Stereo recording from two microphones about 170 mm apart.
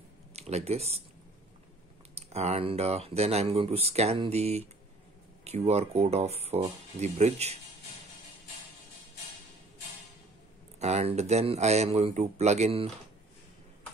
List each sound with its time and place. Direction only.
0.3 s speech: 40° right (ahead or behind)
2.1 s speech: 40° right (ahead or behind)
10.8 s speech: 40° right (ahead or behind)